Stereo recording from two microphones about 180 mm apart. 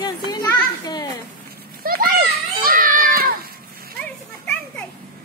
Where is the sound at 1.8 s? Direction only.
55° right (ahead or behind).